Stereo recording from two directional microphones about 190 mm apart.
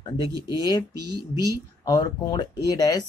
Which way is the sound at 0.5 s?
20° left (ahead or behind).